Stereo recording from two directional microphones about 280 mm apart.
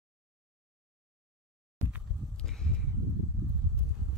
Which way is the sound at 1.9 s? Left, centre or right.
Centre.